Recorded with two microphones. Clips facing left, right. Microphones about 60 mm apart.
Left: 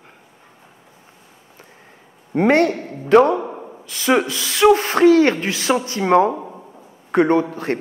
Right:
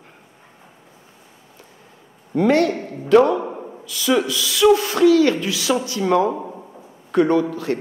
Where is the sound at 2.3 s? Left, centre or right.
Left.